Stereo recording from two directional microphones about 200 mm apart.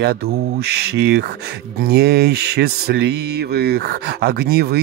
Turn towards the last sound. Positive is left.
turn(degrees=-50)  # may be behind; listen again after turning